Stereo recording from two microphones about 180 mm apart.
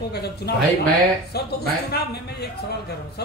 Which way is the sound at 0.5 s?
65° left (ahead or behind).